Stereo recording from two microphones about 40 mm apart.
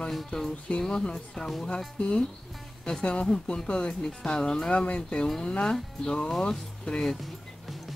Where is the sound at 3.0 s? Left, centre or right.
Left.